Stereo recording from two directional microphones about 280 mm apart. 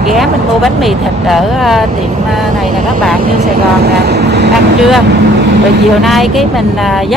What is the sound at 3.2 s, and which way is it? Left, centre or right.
Speech, right.